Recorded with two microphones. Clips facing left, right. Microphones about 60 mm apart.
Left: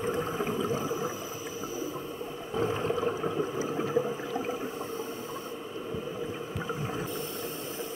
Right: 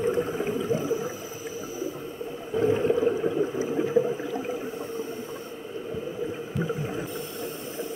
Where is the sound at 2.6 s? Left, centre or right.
Centre.